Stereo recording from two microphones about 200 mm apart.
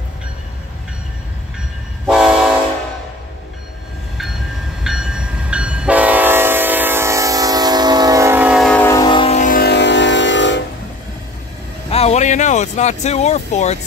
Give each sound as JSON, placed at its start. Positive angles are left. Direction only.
{"t": 2.0, "sound": "train", "side_deg": -5}
{"t": 4.8, "sound": "train", "side_deg": -5}
{"t": 8.9, "sound": "music", "side_deg": 25}
{"t": 11.9, "sound": "a sound", "side_deg": 30}